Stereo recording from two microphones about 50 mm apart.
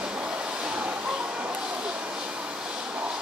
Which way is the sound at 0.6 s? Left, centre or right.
Right.